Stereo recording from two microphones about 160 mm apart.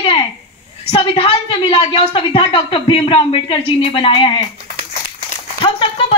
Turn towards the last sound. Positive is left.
turn(degrees=35)  # may be behind; listen again after turning